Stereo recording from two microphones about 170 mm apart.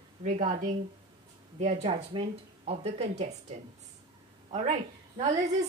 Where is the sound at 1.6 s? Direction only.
40° right (ahead or behind).